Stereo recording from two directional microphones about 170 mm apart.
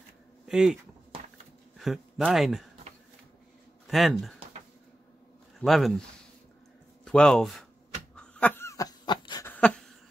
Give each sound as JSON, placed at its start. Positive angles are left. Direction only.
{"t": 0.5, "sound": "speech", "side_deg": 0}
{"t": 1.8, "sound": "speech", "side_deg": 0}
{"t": 3.8, "sound": "speech", "side_deg": 0}
{"t": 5.6, "sound": "speech", "side_deg": 0}
{"t": 7.1, "sound": "speech", "side_deg": 5}
{"t": 8.2, "sound": "a sound", "side_deg": 10}
{"t": 9.5, "sound": "a sound", "side_deg": 10}